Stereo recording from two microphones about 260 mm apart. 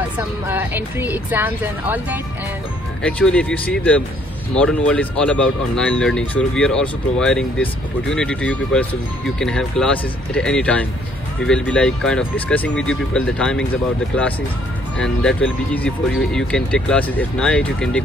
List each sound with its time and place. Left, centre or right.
0.5 s speech: centre
3.0 s speech: centre
15.0 s speech: centre